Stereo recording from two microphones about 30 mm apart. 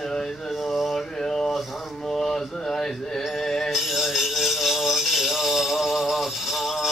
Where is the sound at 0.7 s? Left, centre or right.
Centre.